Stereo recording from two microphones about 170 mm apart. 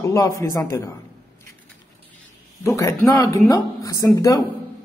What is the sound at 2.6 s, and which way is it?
A woman's voice, 20° left (ahead or behind).